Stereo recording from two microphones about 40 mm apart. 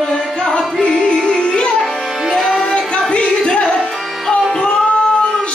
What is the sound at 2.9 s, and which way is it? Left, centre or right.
Music, left.